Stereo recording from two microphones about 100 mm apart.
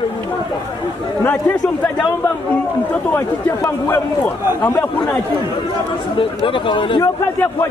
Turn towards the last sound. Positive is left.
turn(degrees=55)  # may be behind; listen again after turning